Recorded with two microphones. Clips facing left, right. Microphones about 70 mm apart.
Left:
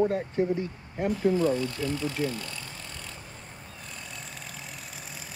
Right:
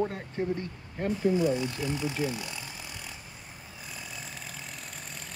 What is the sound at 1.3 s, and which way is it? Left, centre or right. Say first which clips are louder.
Speech: left 1 dB; centre.